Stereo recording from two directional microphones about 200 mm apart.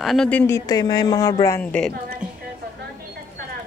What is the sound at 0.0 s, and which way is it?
Speech, centre (ahead or behind).